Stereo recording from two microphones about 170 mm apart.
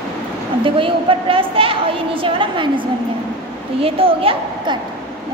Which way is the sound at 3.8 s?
35° right (ahead or behind).